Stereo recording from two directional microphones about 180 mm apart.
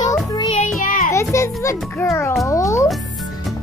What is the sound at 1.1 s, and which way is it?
A child's voice, 15° left (ahead or behind).